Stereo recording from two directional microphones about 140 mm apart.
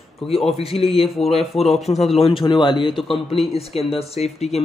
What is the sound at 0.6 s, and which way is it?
Speech, 45° left (ahead or behind).